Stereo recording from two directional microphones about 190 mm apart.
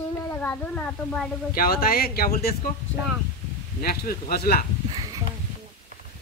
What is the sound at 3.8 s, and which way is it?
Speech, 50° left (ahead or behind).